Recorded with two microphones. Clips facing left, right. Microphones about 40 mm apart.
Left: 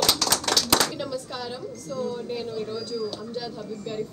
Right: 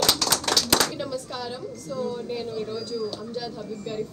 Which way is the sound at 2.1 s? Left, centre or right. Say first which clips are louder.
Even; centre.